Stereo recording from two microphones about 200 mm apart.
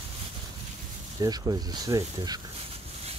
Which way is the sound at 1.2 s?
20° right (ahead or behind).